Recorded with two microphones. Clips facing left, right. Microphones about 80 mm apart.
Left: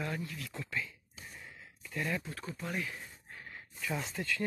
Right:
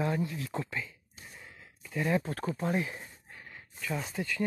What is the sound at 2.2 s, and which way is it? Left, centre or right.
Speech, right.